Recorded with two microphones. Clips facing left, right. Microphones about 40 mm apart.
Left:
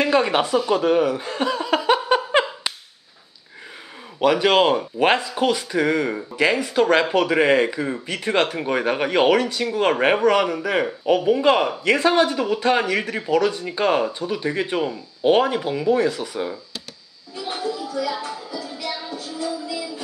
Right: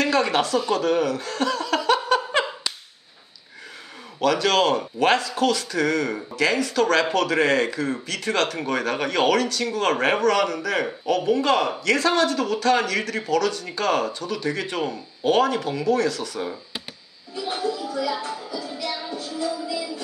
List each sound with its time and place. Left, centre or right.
0.0 s speech: centre
4.2 s speech: left
17.4 s a sound: centre
17.8 s music: centre